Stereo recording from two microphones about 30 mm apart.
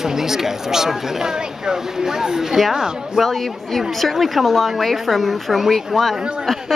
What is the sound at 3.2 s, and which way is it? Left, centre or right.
A woman's voice, centre.